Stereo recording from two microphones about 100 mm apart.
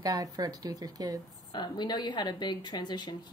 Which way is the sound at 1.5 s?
45° left (ahead or behind).